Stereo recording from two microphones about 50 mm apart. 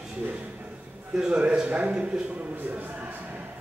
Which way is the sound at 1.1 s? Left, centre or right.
Right.